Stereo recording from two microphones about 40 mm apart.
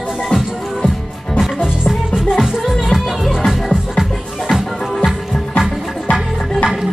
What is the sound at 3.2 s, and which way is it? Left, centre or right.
Music, centre.